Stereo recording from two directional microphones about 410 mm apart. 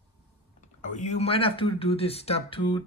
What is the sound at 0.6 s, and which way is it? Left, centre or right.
Speech, centre.